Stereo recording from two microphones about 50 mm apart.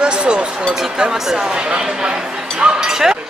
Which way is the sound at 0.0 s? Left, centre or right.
Right.